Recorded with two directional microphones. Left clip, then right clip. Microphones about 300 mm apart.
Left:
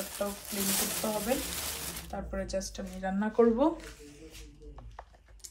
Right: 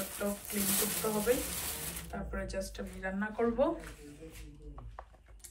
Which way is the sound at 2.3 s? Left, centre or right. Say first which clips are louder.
Left 4 dB; centre.